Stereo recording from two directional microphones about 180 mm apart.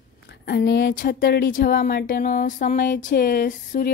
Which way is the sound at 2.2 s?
45° left (ahead or behind).